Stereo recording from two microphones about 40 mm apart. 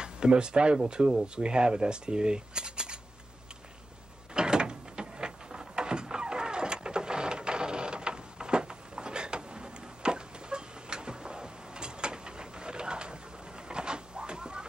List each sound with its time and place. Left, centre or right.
0.0 s speech: right
4.3 s door: right
13.7 s cupboard open or close: right